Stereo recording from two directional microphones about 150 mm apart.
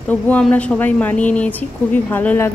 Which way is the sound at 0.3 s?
10° left (ahead or behind).